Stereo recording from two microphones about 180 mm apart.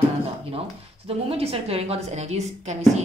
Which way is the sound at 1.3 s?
35° right (ahead or behind).